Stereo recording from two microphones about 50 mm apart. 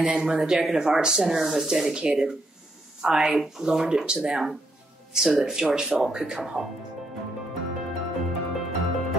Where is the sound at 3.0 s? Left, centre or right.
Centre.